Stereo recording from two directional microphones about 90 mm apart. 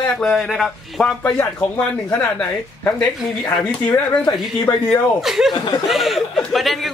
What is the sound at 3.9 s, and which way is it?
Speech, 35° left (ahead or behind).